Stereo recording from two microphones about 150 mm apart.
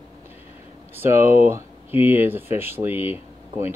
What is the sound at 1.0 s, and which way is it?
Speech, 15° right (ahead or behind).